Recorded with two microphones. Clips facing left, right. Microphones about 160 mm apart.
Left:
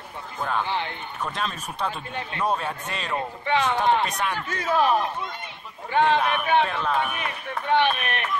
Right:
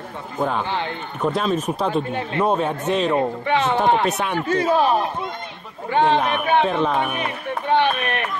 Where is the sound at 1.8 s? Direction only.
25° right (ahead or behind).